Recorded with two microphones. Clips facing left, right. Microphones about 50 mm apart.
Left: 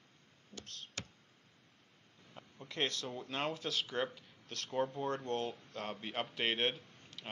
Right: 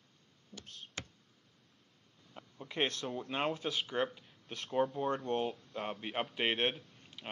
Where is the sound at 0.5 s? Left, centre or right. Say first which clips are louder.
Even; left.